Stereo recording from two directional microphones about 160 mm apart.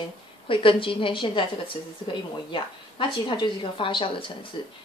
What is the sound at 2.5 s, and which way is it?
A woman's voice, 30° left (ahead or behind).